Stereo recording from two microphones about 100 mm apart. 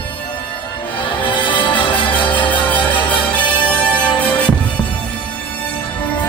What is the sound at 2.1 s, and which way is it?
Music, 15° left (ahead or behind).